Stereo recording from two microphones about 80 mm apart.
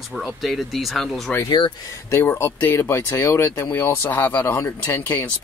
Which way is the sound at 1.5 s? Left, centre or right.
Left.